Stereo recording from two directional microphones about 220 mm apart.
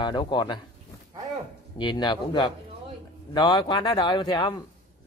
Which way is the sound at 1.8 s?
20° left (ahead or behind).